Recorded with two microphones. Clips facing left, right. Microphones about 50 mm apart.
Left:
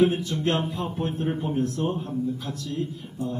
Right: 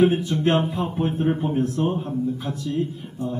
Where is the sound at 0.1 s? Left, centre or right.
Right.